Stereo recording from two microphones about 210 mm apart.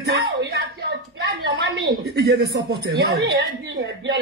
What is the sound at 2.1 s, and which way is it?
Speech, 55° right (ahead or behind).